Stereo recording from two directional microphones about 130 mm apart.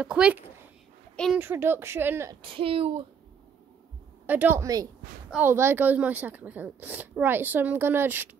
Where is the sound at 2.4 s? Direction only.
45° right (ahead or behind).